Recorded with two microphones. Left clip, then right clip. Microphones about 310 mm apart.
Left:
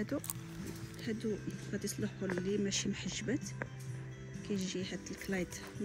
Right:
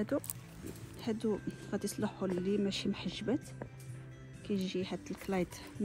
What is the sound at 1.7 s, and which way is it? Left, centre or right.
Speech, right.